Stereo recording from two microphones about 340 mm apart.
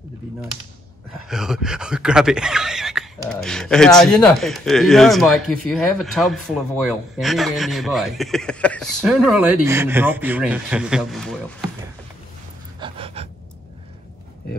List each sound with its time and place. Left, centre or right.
1.2 s speech: centre
12.8 s gasp: centre